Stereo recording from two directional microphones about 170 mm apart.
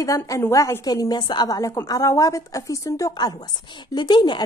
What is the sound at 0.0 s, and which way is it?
A woman's voice, 20° left (ahead or behind).